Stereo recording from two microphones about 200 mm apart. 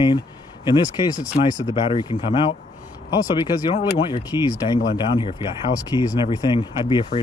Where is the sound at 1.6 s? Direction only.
30° left (ahead or behind).